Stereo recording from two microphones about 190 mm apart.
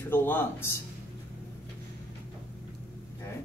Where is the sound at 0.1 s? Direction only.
10° left (ahead or behind).